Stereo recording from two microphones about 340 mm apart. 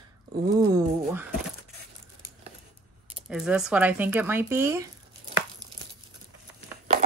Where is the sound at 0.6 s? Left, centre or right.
Centre.